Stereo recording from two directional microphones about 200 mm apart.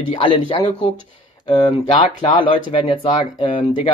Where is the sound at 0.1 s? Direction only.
25° left (ahead or behind).